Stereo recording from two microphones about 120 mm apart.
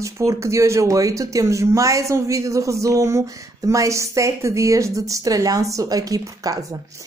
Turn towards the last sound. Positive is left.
turn(degrees=-30)  # may be behind; listen again after turning